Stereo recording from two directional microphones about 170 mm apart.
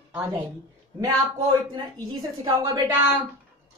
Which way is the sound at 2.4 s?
25° right (ahead or behind).